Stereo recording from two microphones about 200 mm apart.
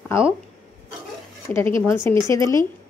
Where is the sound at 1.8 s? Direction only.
10° left (ahead or behind).